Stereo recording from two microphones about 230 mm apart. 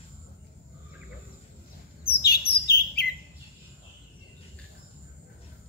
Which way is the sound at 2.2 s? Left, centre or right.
Left.